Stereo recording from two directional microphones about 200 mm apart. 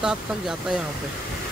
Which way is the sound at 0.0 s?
5° right (ahead or behind).